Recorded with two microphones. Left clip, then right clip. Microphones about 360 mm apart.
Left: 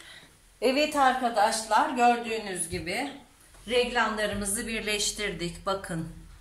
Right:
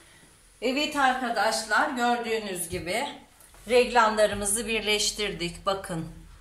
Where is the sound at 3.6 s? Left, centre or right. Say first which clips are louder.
Right 5 dB; centre.